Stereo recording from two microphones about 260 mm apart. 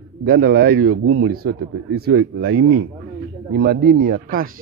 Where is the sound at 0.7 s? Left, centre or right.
Right.